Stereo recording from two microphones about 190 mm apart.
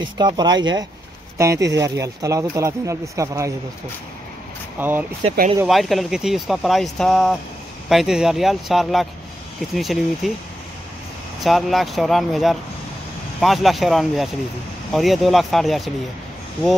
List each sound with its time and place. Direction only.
0.2 s speech: 20° right (ahead or behind)
4.7 s speech: 10° right (ahead or behind)
11.4 s speech: centre (ahead or behind)